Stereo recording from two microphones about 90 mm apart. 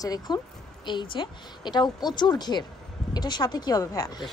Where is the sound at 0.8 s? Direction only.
60° left (ahead or behind); by 4.1 s 40° left (ahead or behind).